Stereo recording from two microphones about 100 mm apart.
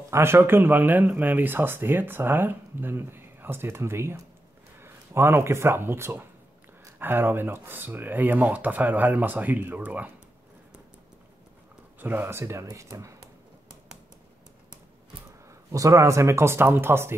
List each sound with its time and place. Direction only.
0.1 s speech: 25° right (ahead or behind)
12.0 s speech: 20° right (ahead or behind)
15.7 s speech: 35° right (ahead or behind)